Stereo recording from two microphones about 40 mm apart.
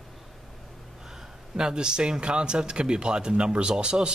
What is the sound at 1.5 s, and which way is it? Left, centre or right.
Speech, right.